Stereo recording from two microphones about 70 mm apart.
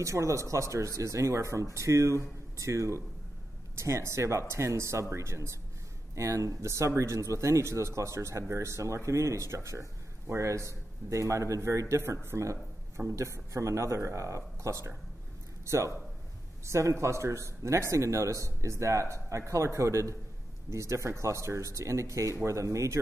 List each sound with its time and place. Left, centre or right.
0.0 s a man's voice: right